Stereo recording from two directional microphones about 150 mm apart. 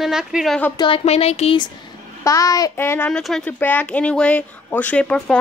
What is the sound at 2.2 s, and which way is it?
Speech, 25° left (ahead or behind).